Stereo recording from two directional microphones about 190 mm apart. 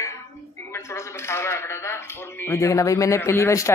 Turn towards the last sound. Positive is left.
turn(degrees=15)  # may be behind; listen again after turning